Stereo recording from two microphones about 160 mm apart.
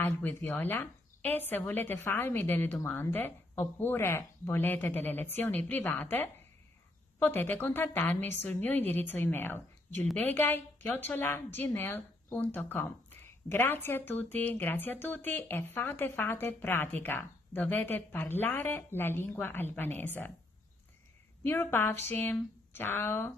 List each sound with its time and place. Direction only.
0.0 s a woman's voice: 10° left (ahead or behind)
21.4 s a woman's voice: 15° left (ahead or behind)